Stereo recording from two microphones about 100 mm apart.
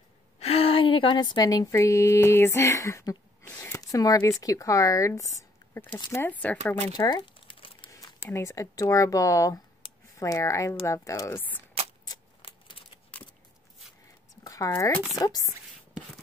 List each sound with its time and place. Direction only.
0.4 s a woman's voice: 80° left; by 5.2 s 30° left (ahead or behind)
6.1 s speech: 20° left (ahead or behind)
7.0 s crumpling: 45° left (ahead or behind)
7.9 s speech: 30° left (ahead or behind)
11.3 s speech: 15° left (ahead or behind)
12.4 s a sound: 60° left (ahead or behind)
14.4 s a sound: 35° left (ahead or behind)
15.1 s speech: 35° left (ahead or behind)